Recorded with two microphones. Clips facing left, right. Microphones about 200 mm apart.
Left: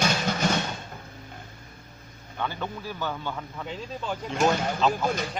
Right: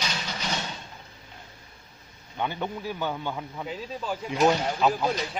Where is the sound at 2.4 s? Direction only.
20° right (ahead or behind).